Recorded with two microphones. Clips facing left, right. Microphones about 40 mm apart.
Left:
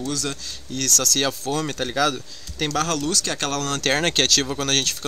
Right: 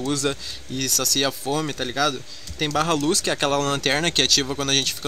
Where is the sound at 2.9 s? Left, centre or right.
Right.